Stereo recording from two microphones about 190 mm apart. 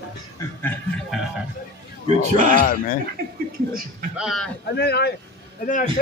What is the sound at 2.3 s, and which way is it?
Speech, 45° right (ahead or behind).